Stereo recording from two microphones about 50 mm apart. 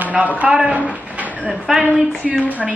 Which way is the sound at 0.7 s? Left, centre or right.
Right.